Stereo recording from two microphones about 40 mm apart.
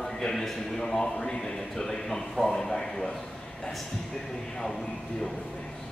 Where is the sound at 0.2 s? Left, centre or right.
Centre.